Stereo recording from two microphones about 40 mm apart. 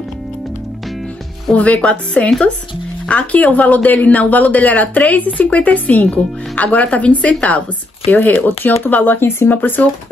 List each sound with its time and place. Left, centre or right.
1.5 s speech: left
3.1 s speech: left
8.3 s speech: left